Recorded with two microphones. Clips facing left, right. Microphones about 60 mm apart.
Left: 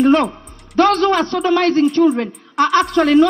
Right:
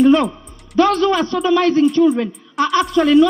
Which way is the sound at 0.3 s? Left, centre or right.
Left.